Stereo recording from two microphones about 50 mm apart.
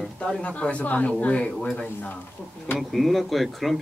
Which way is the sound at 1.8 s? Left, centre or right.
Left.